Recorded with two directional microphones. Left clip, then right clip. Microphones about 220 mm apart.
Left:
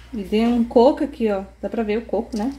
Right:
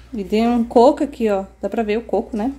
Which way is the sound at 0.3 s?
15° right (ahead or behind).